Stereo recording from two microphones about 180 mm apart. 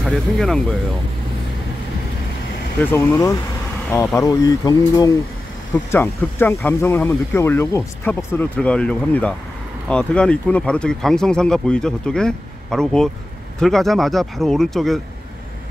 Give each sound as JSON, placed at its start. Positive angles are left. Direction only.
{"t": 0.0, "sound": "speech", "side_deg": 0}
{"t": 2.8, "sound": "speech", "side_deg": 15}